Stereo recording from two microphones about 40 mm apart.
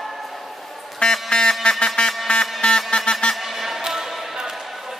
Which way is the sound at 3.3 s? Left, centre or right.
Centre.